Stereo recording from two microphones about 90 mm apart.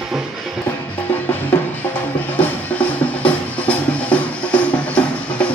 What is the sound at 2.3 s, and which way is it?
Music, 20° left (ahead or behind).